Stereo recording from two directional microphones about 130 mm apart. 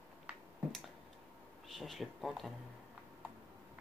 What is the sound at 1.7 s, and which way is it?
Speech, centre (ahead or behind).